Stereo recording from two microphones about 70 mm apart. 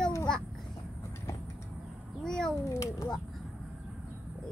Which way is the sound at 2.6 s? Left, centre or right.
Left.